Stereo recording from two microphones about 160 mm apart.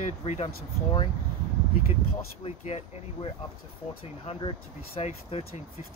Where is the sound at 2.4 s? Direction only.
40° left (ahead or behind).